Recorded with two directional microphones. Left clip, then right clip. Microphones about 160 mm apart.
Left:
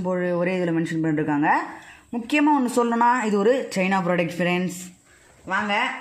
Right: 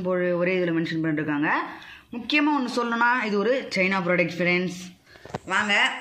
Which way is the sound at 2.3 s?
45° left (ahead or behind).